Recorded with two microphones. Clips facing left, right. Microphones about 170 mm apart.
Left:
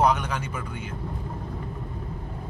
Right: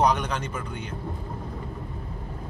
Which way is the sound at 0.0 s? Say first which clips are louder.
Even; 5° left (ahead or behind).